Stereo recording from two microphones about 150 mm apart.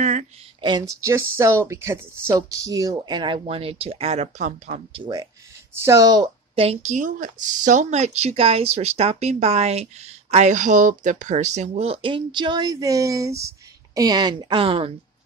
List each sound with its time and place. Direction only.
0.0 s a sound: 55° right (ahead or behind)
0.6 s speech: 30° right (ahead or behind); by 4.8 s 50° right (ahead or behind)
4.9 s speech: 30° right (ahead or behind)
6.5 s speech: 40° right (ahead or behind)